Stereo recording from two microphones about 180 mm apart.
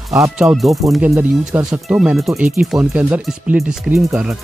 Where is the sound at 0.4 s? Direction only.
5° right (ahead or behind).